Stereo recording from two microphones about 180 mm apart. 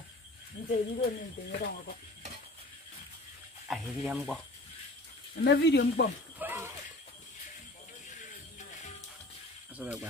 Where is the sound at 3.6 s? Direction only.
Centre (ahead or behind).